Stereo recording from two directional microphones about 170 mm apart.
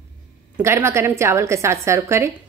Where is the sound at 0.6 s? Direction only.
15° right (ahead or behind).